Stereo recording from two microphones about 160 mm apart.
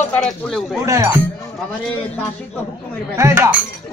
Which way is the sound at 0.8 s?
15° right (ahead or behind).